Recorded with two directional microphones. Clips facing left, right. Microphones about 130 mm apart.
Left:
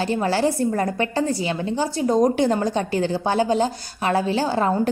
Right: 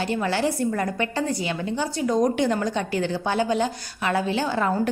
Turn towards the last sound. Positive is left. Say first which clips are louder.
# left 3 dB
turn(degrees=35)  # may be behind; listen again after turning